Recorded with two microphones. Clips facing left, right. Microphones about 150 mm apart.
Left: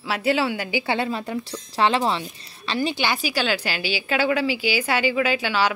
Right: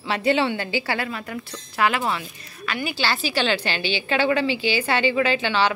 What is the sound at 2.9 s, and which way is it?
A woman's voice, 15° left (ahead or behind).